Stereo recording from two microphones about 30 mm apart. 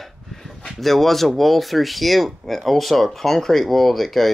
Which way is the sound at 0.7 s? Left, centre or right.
Centre.